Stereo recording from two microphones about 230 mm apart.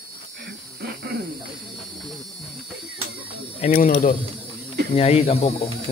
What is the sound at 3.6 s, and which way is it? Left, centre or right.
Mechanisms, left.